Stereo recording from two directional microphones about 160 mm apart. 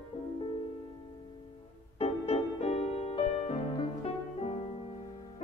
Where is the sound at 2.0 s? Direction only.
40° left (ahead or behind).